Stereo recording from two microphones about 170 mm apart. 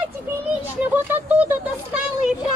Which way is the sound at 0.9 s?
10° right (ahead or behind).